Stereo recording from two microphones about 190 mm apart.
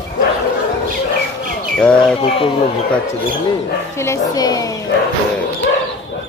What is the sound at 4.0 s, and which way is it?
Speech, 15° left (ahead or behind).